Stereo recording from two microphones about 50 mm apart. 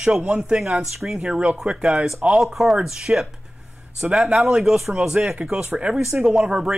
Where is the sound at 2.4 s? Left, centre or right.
Centre.